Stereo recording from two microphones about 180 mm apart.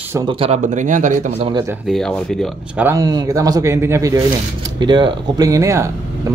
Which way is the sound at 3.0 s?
20° right (ahead or behind).